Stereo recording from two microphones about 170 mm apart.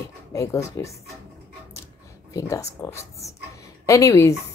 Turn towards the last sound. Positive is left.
turn(degrees=20)  # may be behind; listen again after turning